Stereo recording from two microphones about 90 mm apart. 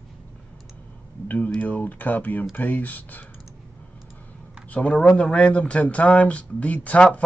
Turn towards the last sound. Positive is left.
turn(degrees=15)  # may be behind; listen again after turning